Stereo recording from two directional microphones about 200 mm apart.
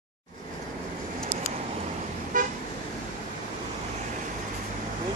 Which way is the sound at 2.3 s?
40° right (ahead or behind).